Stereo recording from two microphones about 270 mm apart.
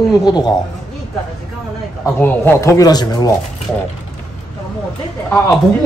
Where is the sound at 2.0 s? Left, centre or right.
Centre.